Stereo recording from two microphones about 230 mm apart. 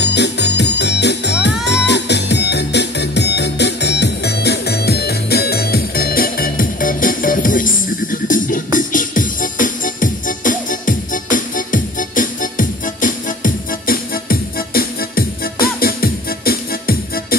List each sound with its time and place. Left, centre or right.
0.0 s music: left